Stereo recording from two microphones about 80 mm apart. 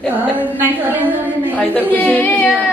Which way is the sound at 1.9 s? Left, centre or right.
Centre.